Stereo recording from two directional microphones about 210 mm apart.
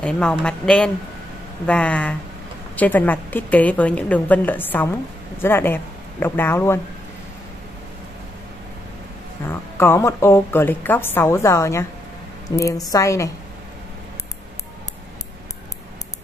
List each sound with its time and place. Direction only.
0.0 s a woman's voice: 5° left (ahead or behind)
9.5 s a woman's voice: 10° left (ahead or behind)